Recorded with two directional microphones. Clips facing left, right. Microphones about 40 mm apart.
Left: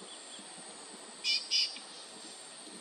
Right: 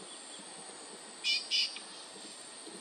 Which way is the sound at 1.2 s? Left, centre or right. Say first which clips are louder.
Right 1 dB; right.